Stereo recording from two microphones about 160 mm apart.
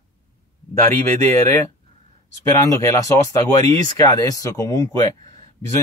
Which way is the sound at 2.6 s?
20° left (ahead or behind).